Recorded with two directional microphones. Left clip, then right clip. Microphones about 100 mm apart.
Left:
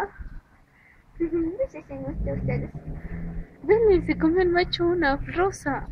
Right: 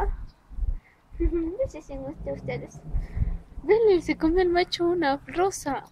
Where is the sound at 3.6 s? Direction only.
65° right (ahead or behind).